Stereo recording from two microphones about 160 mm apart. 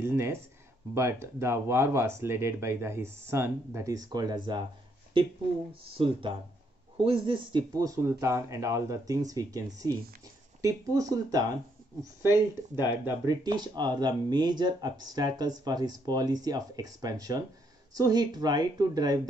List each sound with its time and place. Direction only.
0.0 s speech: 15° right (ahead or behind)
12.3 s speech: 25° left (ahead or behind)
13.0 s speech: 20° right (ahead or behind)